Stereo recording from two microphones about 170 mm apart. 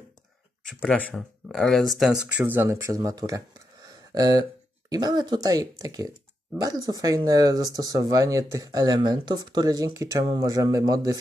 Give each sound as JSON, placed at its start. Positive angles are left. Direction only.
{"t": 0.7, "sound": "speech", "side_deg": 5}